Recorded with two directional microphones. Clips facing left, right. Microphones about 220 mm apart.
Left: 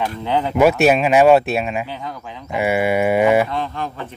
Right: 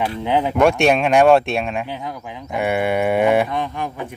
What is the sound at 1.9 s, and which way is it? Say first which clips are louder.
Speech: right 1 dB; 15° right (ahead or behind).